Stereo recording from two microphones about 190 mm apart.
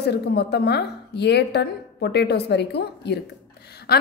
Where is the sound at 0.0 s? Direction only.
60° left (ahead or behind).